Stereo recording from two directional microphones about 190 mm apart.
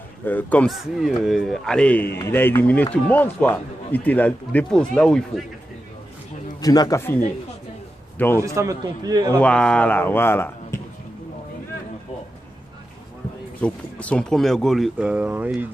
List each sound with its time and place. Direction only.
0.2 s a man's voice: 10° left (ahead or behind)
6.6 s speech: 20° left (ahead or behind)
8.2 s a man's voice: 10° left (ahead or behind)
8.5 s a man's voice: 20° right (ahead or behind)
9.4 s a man's voice: 5° left (ahead or behind)
13.6 s speech: 5° left (ahead or behind)